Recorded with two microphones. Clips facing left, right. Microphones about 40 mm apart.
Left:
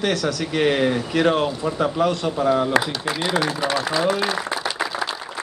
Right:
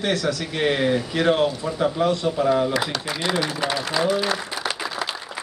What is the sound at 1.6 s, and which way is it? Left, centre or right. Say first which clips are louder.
Speech: left 1 dB; left.